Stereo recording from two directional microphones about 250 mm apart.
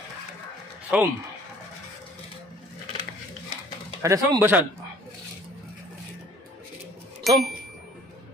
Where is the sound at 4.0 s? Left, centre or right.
Centre.